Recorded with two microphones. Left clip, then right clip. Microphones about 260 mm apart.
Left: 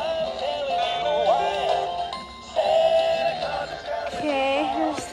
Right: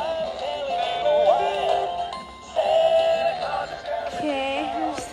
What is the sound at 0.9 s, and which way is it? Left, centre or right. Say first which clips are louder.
Music: right 3 dB; right.